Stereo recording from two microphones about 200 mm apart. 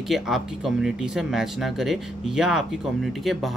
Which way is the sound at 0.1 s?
Centre (ahead or behind).